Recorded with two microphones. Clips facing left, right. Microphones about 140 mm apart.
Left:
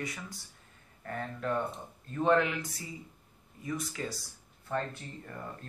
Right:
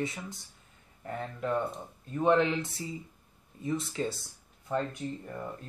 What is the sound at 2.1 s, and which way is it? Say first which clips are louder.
Speech: right 2 dB; 20° right (ahead or behind).